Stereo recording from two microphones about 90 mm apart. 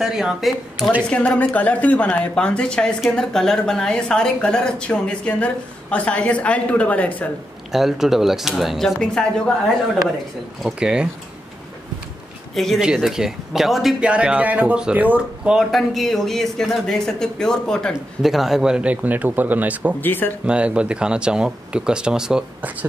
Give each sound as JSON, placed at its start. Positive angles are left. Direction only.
{"t": 0.0, "sound": "speech", "side_deg": -5}
{"t": 1.1, "sound": "a woman's voice", "side_deg": 10}
{"t": 7.7, "sound": "speech", "side_deg": -5}
{"t": 10.6, "sound": "speech", "side_deg": -10}
{"t": 12.5, "sound": "speech", "side_deg": 0}
{"t": 14.0, "sound": "speech", "side_deg": -10}
{"t": 15.7, "sound": "speech", "side_deg": 0}
{"t": 20.0, "sound": "speech", "side_deg": 20}
{"t": 20.4, "sound": "speech", "side_deg": -10}